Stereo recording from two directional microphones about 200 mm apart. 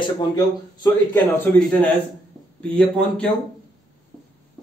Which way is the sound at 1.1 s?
10° left (ahead or behind).